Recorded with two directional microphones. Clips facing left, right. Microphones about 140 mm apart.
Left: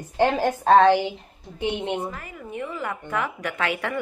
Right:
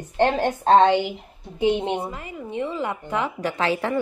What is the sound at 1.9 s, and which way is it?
Speech, 15° right (ahead or behind).